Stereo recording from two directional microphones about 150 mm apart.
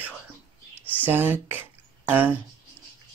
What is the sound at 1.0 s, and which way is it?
Speech, 10° right (ahead or behind).